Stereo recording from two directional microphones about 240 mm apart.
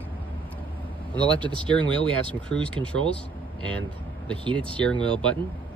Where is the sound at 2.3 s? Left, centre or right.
Centre.